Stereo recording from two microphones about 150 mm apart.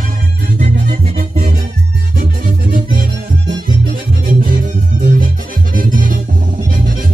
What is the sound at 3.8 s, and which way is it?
Music, 75° right (ahead or behind).